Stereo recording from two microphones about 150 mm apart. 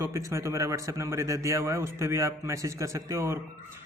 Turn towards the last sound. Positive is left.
turn(degrees=-20)  # may be behind; listen again after turning